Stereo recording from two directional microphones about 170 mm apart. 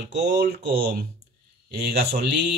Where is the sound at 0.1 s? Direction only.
80° right.